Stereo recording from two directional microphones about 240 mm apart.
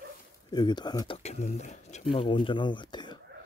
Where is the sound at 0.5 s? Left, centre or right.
Centre.